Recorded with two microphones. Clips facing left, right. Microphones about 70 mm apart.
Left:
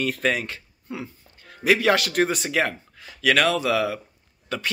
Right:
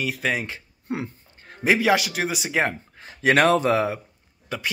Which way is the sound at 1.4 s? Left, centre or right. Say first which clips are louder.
Right 2 dB; right.